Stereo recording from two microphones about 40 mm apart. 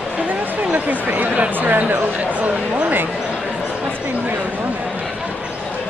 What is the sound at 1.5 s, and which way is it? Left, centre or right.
Speech, right.